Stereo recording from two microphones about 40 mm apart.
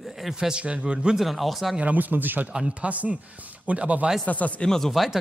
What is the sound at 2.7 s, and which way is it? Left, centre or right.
A man's voice, right.